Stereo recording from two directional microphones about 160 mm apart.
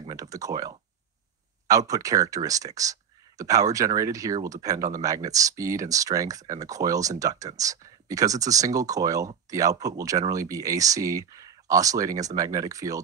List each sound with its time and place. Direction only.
0.1 s speech: 20° right (ahead or behind)